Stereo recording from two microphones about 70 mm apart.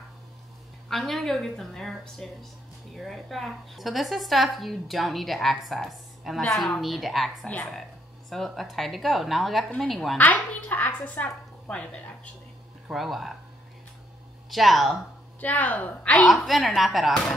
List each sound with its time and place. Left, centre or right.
0.8 s a woman's voice: centre
10.1 s speech: left
12.8 s a woman's voice: centre
14.5 s a woman's voice: centre
15.4 s speech: left
16.3 s a woman's voice: centre